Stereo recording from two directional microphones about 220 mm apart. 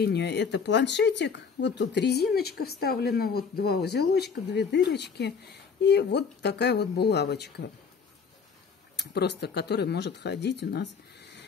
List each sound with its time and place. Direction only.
0.0 s speech: 50° left (ahead or behind)
8.9 s speech: 50° left (ahead or behind)